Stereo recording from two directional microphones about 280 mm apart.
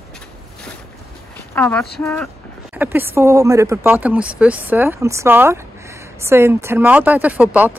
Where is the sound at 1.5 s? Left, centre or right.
Centre.